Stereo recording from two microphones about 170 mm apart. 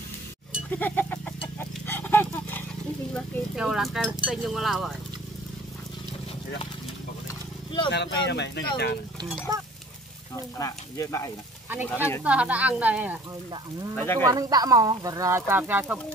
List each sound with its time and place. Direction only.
0.7 s a sound: 10° left (ahead or behind)
1.6 s livestock: 10° left (ahead or behind)
3.2 s horse: 5° right (ahead or behind)
4.3 s speech: centre (ahead or behind)
7.2 s a sound: 30° left (ahead or behind)
7.9 s speech: 85° left
10.3 s speech: 15° left (ahead or behind)
12.2 s speech: 10° right (ahead or behind)
13.9 s speech: 15° left (ahead or behind)
14.2 s speech: 20° right (ahead or behind)